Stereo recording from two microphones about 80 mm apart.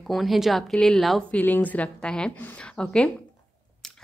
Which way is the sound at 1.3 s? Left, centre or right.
Left.